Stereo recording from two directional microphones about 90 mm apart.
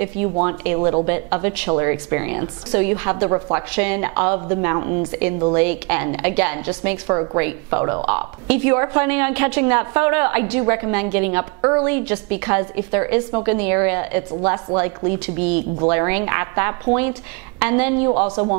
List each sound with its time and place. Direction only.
0.0 s a woman's voice: 20° right (ahead or behind)
3.3 s speech: 30° right (ahead or behind)
3.7 s a woman's voice: 15° right (ahead or behind)